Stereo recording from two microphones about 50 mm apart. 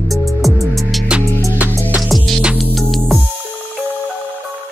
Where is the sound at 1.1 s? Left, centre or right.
Centre.